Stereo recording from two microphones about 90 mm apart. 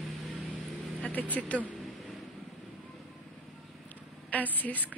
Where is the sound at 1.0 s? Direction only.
20° left (ahead or behind).